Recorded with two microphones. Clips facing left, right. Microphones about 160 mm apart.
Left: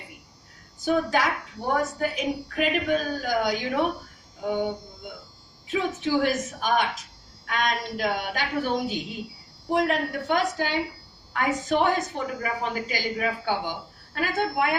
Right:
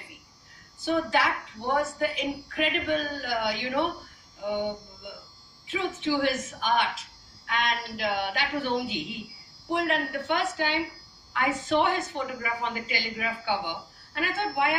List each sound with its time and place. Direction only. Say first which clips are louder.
0.7 s a woman's voice: left 2 dB; 40° left (ahead or behind)
5.7 s a woman's voice: left 3 dB; 40° left (ahead or behind)